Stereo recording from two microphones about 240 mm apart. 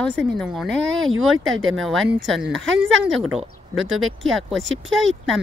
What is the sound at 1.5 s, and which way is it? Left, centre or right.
Speech, right.